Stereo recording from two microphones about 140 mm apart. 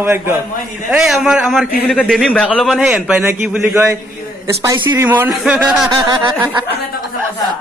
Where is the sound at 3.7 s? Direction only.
20° right (ahead or behind).